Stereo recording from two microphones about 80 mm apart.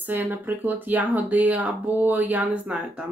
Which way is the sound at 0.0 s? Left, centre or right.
Right.